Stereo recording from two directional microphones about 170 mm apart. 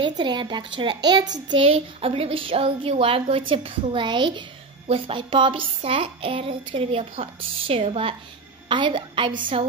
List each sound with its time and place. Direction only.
0.2 s a woman's voice: 25° right (ahead or behind)